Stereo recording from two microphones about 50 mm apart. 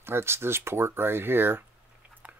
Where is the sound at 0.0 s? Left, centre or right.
Right.